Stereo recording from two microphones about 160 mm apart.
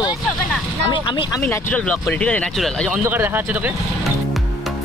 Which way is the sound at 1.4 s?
10° left (ahead or behind).